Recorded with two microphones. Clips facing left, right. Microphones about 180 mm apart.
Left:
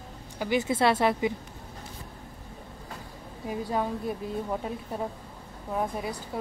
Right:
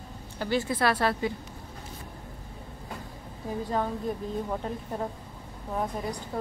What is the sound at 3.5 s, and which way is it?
Speech, 10° left (ahead or behind).